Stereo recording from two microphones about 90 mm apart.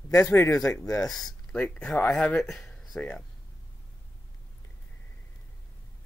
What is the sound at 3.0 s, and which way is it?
Speech, 15° left (ahead or behind).